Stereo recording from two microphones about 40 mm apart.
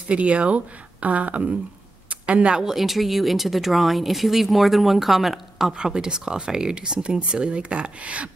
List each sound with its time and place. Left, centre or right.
0.1 s speech: right
2.0 s a sound: right
2.6 s speech: centre
5.7 s speech: right